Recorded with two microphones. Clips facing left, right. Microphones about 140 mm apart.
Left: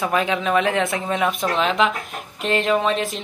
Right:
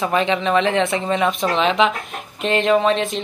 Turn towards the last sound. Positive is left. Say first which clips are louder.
# right 3 dB
turn(degrees=0)  # may be behind; listen again after turning